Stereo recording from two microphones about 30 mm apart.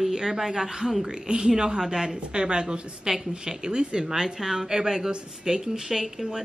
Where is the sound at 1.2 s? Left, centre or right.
Right.